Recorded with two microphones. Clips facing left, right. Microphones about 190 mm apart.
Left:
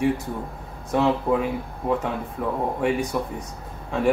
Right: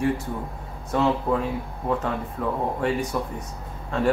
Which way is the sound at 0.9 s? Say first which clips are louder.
Left 2 dB; 10° left (ahead or behind).